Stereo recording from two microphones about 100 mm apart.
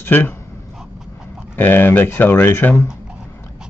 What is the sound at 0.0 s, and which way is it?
Speech, 20° left (ahead or behind).